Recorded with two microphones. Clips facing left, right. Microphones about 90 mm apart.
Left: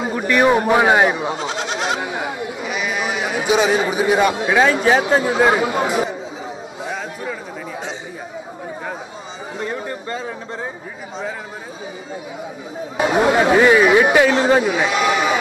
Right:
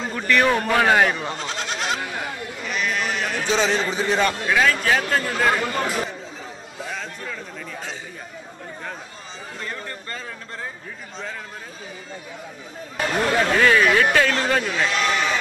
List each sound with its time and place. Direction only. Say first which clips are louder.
0.0 s goat: left 4 dB; 15° left (ahead or behind)
5.0 s speech: left 6 dB; 10° left (ahead or behind)
6.8 s chatter: left 4 dB; 10° left (ahead or behind)
9.6 s a sound: left 8 dB; 15° left (ahead or behind)
12.9 s speech: left 6 dB; 10° left (ahead or behind)